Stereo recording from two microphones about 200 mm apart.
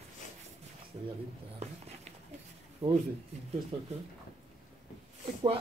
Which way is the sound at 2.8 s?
30° right (ahead or behind).